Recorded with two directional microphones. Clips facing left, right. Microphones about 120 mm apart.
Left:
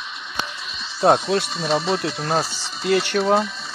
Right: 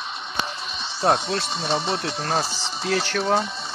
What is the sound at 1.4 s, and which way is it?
Speech, 30° right (ahead or behind).